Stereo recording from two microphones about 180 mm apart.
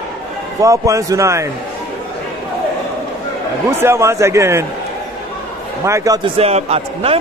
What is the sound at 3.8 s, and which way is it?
Speech, 15° right (ahead or behind).